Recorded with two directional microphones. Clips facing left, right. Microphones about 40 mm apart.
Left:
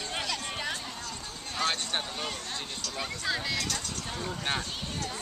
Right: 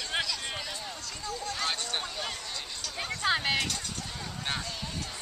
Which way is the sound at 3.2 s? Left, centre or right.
Right.